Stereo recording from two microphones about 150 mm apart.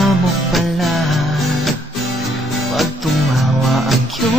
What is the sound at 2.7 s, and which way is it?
Music, centre (ahead or behind).